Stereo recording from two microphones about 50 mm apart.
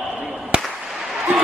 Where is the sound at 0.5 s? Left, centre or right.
Right.